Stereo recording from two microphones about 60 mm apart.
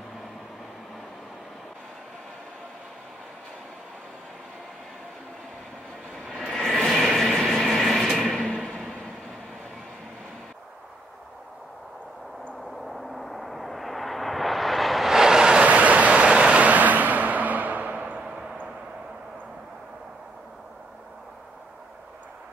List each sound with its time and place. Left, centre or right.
6.2 s vehicle: centre
12.7 s vehicle: centre
15.6 s vehicle: right